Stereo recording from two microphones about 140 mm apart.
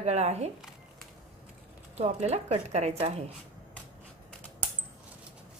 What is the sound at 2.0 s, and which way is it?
A woman's voice, 50° right (ahead or behind).